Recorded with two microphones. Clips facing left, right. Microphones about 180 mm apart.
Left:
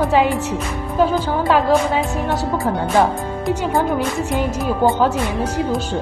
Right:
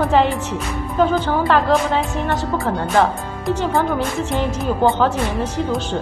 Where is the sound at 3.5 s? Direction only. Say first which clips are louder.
Even; 15° left (ahead or behind).